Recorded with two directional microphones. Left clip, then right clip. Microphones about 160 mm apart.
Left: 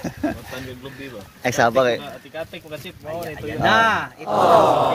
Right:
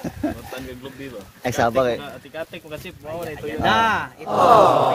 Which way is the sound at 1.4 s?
5° right (ahead or behind).